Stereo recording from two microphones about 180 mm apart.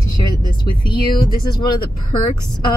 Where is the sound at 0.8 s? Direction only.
25° left (ahead or behind).